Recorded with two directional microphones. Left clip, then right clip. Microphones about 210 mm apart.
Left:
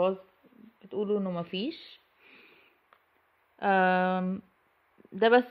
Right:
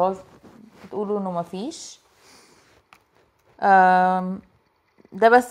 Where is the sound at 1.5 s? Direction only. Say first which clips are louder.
Right 3 dB; 5° left (ahead or behind).